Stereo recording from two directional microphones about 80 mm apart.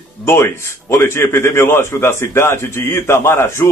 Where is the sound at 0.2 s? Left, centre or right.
Left.